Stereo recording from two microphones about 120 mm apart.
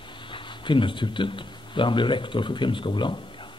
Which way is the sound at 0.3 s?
45° left (ahead or behind).